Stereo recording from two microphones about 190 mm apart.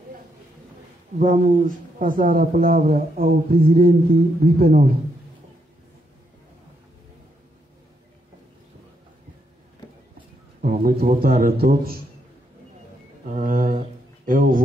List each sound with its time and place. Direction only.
1.2 s speech: 45° right (ahead or behind)
10.6 s a man's voice: 50° right (ahead or behind)
13.3 s speech: 45° right (ahead or behind)